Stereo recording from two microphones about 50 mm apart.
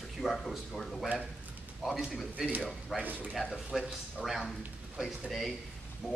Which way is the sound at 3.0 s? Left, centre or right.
Right.